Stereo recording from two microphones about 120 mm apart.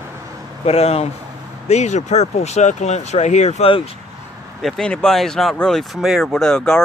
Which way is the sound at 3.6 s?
50° left (ahead or behind).